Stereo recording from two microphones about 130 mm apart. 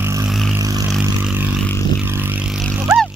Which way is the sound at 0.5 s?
25° right (ahead or behind).